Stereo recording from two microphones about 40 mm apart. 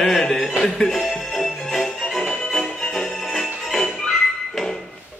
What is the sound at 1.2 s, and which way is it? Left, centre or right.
Music, centre.